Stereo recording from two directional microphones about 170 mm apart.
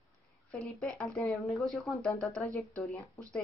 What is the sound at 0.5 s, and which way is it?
Speech, 5° left (ahead or behind).